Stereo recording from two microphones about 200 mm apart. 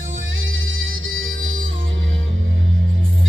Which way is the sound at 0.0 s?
75° right (ahead or behind).